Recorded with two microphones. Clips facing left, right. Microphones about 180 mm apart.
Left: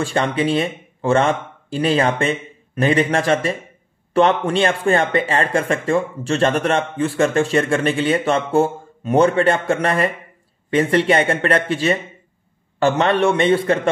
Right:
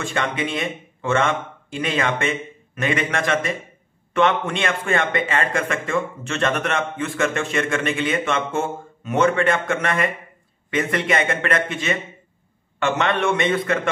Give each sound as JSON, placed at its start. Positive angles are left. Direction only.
{"t": 0.0, "sound": "speech", "side_deg": 35}